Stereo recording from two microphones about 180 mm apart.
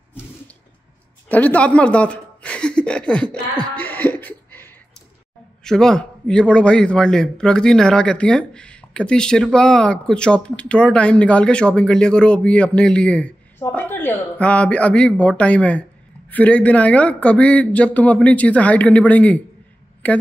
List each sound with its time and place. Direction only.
1.3 s speech: 10° left (ahead or behind)
3.7 s a sound: 10° left (ahead or behind)
5.6 s a man's voice: 5° left (ahead or behind)